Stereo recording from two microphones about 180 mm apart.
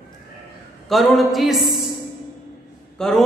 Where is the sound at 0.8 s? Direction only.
Centre (ahead or behind).